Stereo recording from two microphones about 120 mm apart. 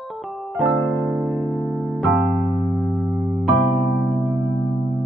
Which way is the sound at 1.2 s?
Centre (ahead or behind).